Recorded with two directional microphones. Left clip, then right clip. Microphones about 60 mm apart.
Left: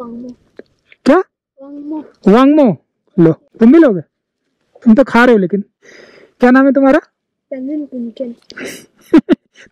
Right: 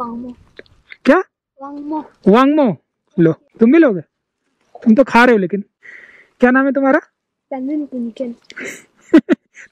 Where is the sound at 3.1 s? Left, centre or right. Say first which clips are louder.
Left 4 dB; left.